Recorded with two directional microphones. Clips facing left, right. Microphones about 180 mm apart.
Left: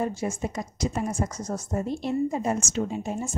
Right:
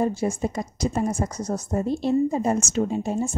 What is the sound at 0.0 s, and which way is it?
Speech, 35° right (ahead or behind).